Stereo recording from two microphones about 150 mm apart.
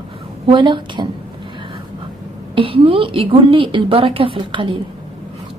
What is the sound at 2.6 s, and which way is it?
A woman's voice, 35° right (ahead or behind).